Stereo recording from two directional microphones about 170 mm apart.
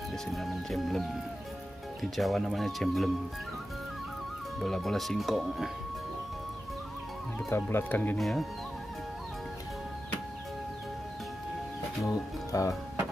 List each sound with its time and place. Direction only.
0.3 s speech: centre (ahead or behind)
4.6 s speech: centre (ahead or behind)
7.6 s speech: 10° left (ahead or behind)
8.2 s speech: centre (ahead or behind)
12.0 s speech: 20° left (ahead or behind)